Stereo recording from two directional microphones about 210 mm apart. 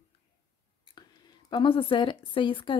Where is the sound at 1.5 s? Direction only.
25° left (ahead or behind).